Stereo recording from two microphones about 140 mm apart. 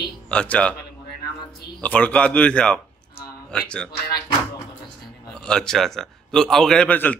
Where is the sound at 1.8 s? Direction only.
10° left (ahead or behind).